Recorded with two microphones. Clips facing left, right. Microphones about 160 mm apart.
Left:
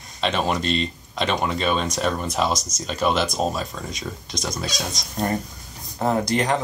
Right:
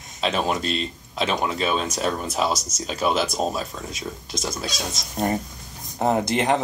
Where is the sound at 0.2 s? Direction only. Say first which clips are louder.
Left 1 dB; 5° right (ahead or behind).